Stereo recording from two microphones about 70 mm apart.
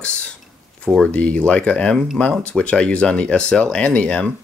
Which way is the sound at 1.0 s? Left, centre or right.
Centre.